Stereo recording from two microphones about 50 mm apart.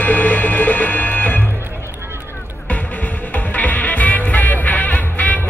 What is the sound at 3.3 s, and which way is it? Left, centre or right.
Music, left.